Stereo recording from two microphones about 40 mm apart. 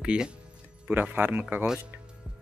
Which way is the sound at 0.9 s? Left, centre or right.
Right.